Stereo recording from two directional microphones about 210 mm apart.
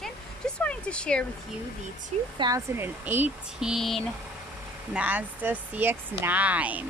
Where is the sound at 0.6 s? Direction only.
5° left (ahead or behind).